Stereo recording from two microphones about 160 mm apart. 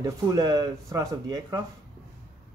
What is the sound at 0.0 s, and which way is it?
Speech, 20° right (ahead or behind).